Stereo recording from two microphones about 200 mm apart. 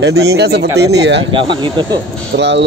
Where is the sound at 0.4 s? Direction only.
55° right (ahead or behind).